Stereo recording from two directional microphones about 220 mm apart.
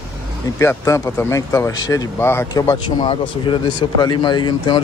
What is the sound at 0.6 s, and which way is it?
A man's voice, 10° left (ahead or behind).